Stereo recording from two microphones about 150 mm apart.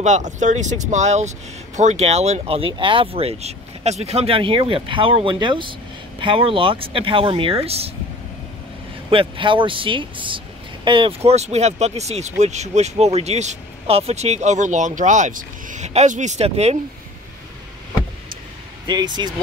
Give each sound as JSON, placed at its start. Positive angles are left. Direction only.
{"t": 0.0, "sound": "speech", "side_deg": -55}
{"t": 9.1, "sound": "speech", "side_deg": -35}
{"t": 11.2, "sound": "speech", "side_deg": -45}
{"t": 18.9, "sound": "speech", "side_deg": -30}